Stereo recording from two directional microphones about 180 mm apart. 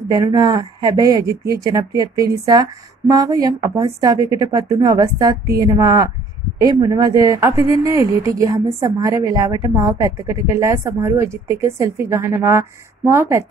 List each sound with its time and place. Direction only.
0.1 s speech: 20° right (ahead or behind)